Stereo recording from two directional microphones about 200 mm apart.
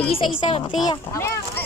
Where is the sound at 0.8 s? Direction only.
15° left (ahead or behind).